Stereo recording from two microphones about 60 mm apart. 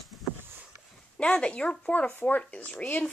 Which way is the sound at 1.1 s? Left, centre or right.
Centre.